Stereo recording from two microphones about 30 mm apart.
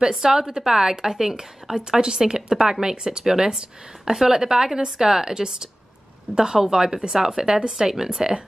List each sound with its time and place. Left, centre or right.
0.2 s speech: centre